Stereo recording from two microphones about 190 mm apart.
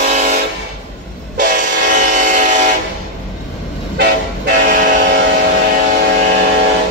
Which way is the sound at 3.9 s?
60° right (ahead or behind).